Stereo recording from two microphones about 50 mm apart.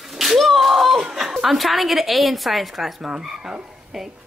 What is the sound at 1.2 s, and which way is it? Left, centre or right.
Speech, centre.